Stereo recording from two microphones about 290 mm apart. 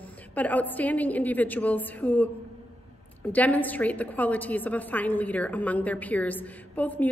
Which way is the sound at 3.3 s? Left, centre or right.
Centre.